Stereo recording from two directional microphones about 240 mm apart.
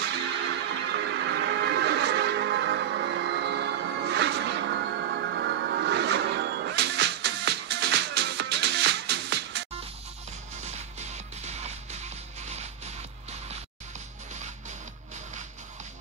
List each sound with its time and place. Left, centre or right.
0.0 s music: right
10.6 s music: right